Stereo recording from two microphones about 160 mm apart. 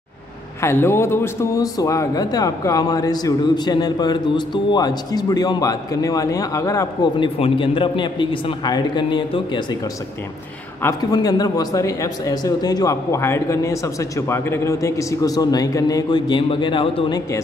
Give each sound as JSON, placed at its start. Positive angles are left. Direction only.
{"t": 0.6, "sound": "a man's voice", "side_deg": 15}
{"t": 10.8, "sound": "a man's voice", "side_deg": 20}